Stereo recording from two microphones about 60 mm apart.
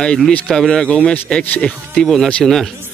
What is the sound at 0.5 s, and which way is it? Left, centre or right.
Speech, centre.